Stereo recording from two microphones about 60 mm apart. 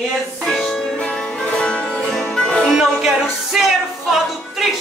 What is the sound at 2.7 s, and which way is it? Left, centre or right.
Music, centre.